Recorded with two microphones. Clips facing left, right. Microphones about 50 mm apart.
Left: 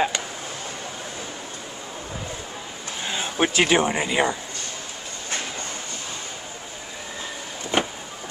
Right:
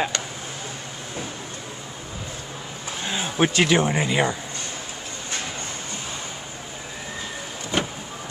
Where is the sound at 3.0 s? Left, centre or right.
Centre.